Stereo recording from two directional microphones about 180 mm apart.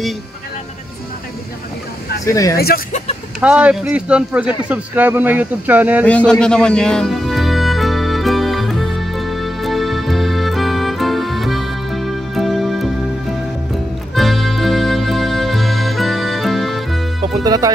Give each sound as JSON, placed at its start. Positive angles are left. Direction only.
{"t": 2.2, "sound": "speech", "side_deg": 20}
{"t": 2.5, "sound": "speech", "side_deg": 60}
{"t": 3.3, "sound": "speech", "side_deg": -5}
{"t": 6.0, "sound": "music", "side_deg": 5}
{"t": 14.1, "sound": "music", "side_deg": 0}
{"t": 17.4, "sound": "speech", "side_deg": -20}